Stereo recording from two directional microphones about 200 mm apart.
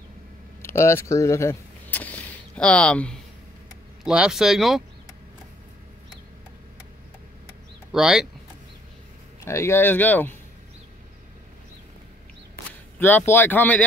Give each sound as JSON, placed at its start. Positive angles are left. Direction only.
{"t": 0.6, "sound": "speech", "side_deg": 15}
{"t": 7.9, "sound": "speech", "side_deg": 0}
{"t": 9.4, "sound": "speech", "side_deg": 15}
{"t": 13.3, "sound": "speech", "side_deg": 10}